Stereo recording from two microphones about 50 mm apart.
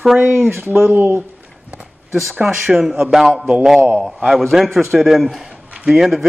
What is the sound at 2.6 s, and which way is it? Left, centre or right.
Speech, centre.